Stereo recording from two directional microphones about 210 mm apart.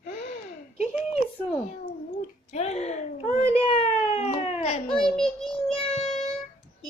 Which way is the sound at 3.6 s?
30° left (ahead or behind).